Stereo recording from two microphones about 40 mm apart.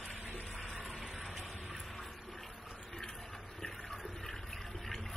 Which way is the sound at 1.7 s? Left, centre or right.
Centre.